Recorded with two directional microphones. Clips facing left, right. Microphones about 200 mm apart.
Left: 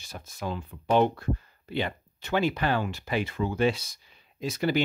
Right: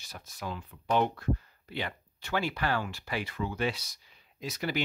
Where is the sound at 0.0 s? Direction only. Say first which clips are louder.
Left 5 dB; 25° left (ahead or behind).